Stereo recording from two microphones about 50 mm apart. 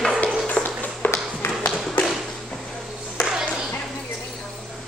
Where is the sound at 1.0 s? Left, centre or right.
Left.